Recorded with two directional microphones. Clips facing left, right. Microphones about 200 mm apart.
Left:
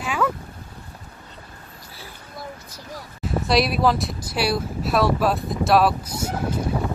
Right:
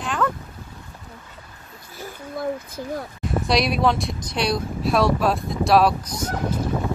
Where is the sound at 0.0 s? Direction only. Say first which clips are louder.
Even; 5° left (ahead or behind).